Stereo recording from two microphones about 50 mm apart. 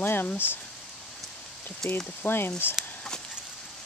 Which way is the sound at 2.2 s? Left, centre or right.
Left.